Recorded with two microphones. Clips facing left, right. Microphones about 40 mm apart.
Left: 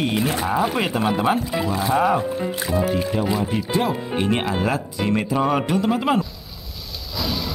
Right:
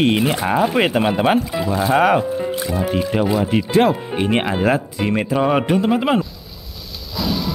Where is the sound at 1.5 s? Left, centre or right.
Centre.